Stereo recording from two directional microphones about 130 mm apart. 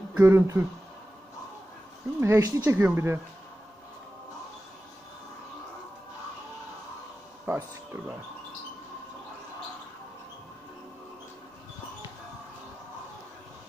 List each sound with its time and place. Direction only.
0.2 s speech: 20° right (ahead or behind)
2.1 s speech: 20° right (ahead or behind)
7.4 s speech: 15° right (ahead or behind)